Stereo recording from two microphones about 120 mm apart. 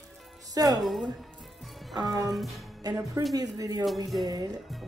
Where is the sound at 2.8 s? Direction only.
30° right (ahead or behind).